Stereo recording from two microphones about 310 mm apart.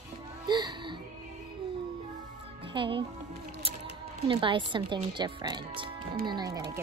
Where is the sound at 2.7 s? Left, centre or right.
Centre.